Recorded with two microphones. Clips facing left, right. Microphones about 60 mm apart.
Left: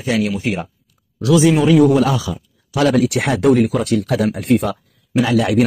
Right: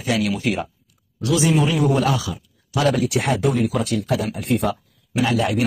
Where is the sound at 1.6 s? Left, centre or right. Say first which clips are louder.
Left 7 dB; left.